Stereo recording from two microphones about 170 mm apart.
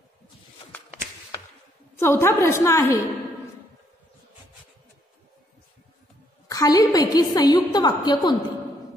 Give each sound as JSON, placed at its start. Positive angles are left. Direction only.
{"t": 2.0, "sound": "a woman's voice", "side_deg": 15}
{"t": 6.5, "sound": "a woman's voice", "side_deg": 20}